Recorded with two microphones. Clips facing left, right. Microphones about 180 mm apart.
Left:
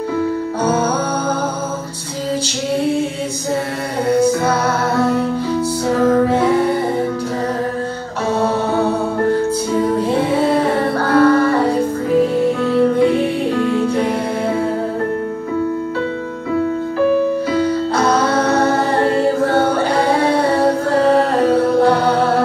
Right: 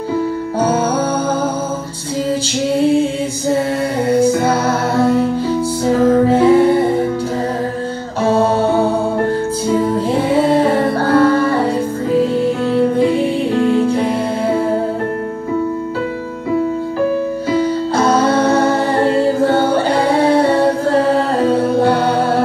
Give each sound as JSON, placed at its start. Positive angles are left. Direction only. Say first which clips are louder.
{"t": 4.2, "sound": "music", "louder": "right 2 dB", "side_deg": -30}
{"t": 9.9, "sound": "music", "louder": "right 1 dB", "side_deg": -25}
{"t": 13.6, "sound": "music", "louder": "right 5 dB", "side_deg": -30}
{"t": 17.5, "sound": "music", "louder": "right 1 dB", "side_deg": -30}